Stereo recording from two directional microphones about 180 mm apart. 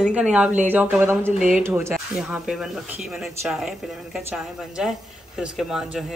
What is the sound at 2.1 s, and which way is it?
Speech, centre (ahead or behind).